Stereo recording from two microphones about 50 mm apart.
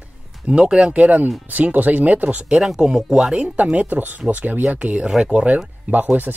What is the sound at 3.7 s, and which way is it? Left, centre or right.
Speech, right.